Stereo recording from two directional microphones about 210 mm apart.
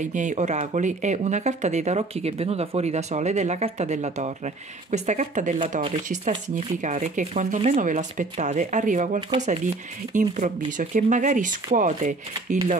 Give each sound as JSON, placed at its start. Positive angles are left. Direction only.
{"t": 0.0, "sound": "speech", "side_deg": -35}